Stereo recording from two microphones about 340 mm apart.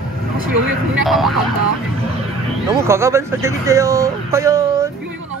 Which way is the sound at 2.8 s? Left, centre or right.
Centre.